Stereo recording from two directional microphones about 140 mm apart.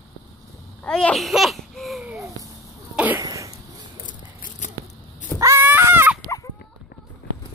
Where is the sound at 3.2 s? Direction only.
25° right (ahead or behind).